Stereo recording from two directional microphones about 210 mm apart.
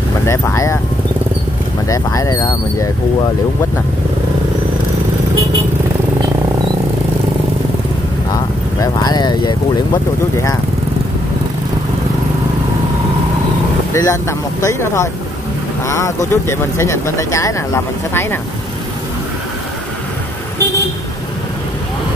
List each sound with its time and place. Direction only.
0.3 s speech: 15° left (ahead or behind)
1.9 s speech: 15° left (ahead or behind)
8.7 s vehicle: 15° left (ahead or behind)
13.9 s speech: 15° left (ahead or behind)